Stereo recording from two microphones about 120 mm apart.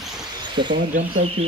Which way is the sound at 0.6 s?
40° right (ahead or behind).